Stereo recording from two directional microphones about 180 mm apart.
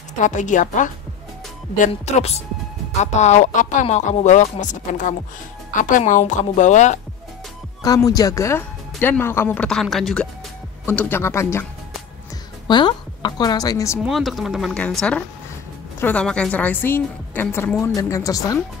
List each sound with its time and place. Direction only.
0.2 s speech: 45° left (ahead or behind)
7.8 s a woman's voice: 20° left (ahead or behind); by 10.2 s centre (ahead or behind)
10.9 s a woman's voice: 10° left (ahead or behind)
12.6 s speech: 25° left (ahead or behind)
14.0 s a woman's voice: centre (ahead or behind); by 18.6 s 20° left (ahead or behind)